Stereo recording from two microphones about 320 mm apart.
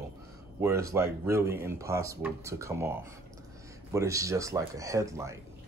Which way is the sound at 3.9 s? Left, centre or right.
Centre.